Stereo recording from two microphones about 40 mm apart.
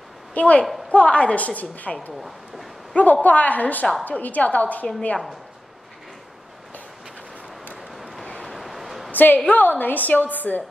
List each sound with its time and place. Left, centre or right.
0.3 s a woman's voice: left
8.5 s a sound: centre
9.1 s a woman's voice: left